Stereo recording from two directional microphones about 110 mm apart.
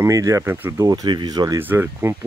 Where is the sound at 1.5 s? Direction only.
20° right (ahead or behind).